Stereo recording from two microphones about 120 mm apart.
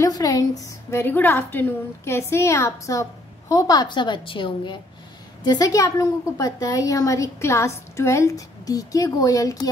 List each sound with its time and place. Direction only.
0.0 s a woman's voice: 30° left (ahead or behind)
1.0 s a woman's voice: 15° left (ahead or behind)